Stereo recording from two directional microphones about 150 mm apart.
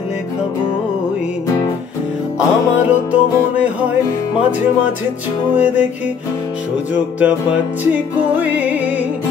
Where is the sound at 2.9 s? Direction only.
10° right (ahead or behind).